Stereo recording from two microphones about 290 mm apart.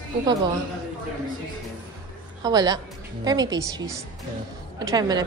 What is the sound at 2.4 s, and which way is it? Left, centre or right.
A woman's voice, centre.